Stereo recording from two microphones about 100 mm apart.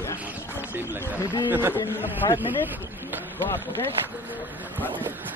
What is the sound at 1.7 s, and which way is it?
Speech, 20° left (ahead or behind).